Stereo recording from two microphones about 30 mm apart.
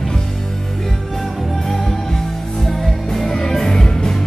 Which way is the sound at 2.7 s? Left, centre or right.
Centre.